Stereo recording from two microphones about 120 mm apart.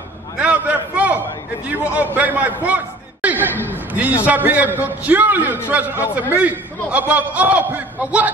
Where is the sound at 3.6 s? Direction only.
15° left (ahead or behind).